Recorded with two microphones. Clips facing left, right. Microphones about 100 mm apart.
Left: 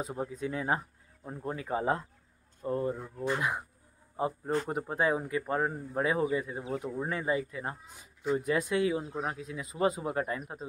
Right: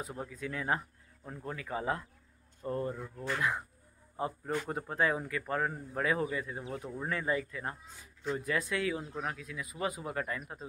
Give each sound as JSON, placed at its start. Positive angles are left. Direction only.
{"t": 0.0, "sound": "speech", "side_deg": 20}
{"t": 2.7, "sound": "speech", "side_deg": 15}
{"t": 4.6, "sound": "speech", "side_deg": 20}